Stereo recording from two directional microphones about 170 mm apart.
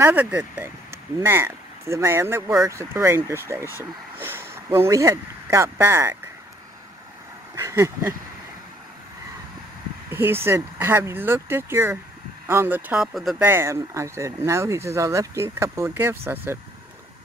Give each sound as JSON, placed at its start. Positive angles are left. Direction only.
{"t": 0.0, "sound": "speech", "side_deg": -10}
{"t": 7.5, "sound": "speech", "side_deg": -15}
{"t": 10.0, "sound": "speech", "side_deg": -15}
{"t": 13.4, "sound": "speech", "side_deg": -15}